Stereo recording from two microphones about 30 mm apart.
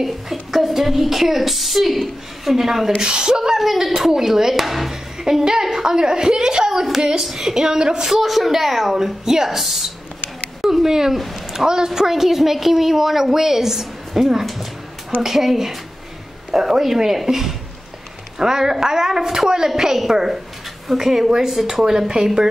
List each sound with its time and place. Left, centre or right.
0.0 s a woman's voice: centre
3.0 s a woman's voice: right
3.5 s a woman's voice: centre
5.2 s a woman's voice: right
7.5 s a woman's voice: right
8.0 s a woman's voice: centre
16.8 s a woman's voice: centre
18.4 s a woman's voice: centre